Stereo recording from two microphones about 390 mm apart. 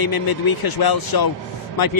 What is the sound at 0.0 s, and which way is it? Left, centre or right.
A man's voice, left.